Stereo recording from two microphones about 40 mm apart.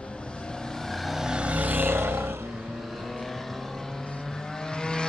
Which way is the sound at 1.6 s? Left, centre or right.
Right.